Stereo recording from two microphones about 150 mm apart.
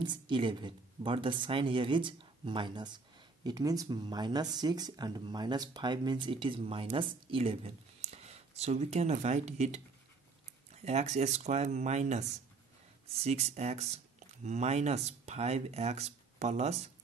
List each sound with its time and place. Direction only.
0.0 s speech: 30° right (ahead or behind); by 16.9 s 45° right (ahead or behind)